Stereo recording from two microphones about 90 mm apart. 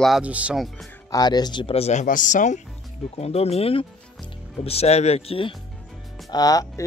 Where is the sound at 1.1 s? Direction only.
50° left (ahead or behind); by 1.9 s 75° left (ahead or behind).